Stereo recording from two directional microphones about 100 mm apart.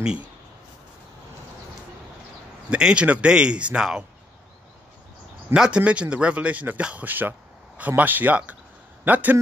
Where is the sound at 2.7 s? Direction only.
10° right (ahead or behind).